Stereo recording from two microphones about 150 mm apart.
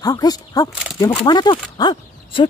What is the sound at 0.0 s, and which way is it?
Speech, 25° left (ahead or behind).